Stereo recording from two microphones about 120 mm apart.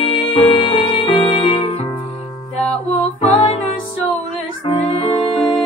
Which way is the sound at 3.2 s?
50° left (ahead or behind).